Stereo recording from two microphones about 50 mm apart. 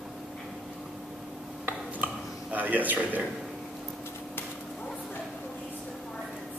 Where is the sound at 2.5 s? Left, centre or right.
Right.